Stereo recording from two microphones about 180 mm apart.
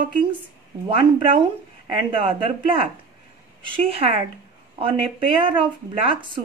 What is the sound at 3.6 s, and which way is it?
Speech, 30° right (ahead or behind).